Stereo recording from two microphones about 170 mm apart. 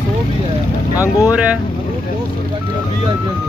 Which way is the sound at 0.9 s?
20° left (ahead or behind).